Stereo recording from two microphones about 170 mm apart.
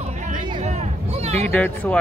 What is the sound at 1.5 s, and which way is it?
Speech, 10° left (ahead or behind).